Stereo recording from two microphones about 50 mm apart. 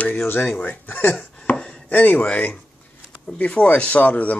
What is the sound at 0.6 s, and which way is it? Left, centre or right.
Speech, left.